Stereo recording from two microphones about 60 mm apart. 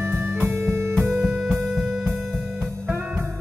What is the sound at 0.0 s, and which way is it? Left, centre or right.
Music, right.